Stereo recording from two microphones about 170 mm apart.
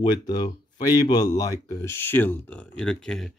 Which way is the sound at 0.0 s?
25° left (ahead or behind).